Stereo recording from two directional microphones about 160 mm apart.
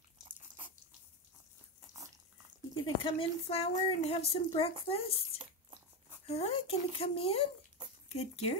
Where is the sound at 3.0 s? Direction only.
35° left (ahead or behind).